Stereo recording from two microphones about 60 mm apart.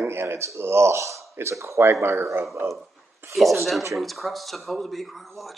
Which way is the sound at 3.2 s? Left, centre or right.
Right.